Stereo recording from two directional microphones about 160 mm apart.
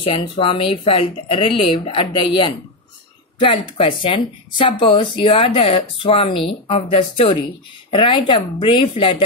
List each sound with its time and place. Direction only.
0.0 s speech: 35° left (ahead or behind)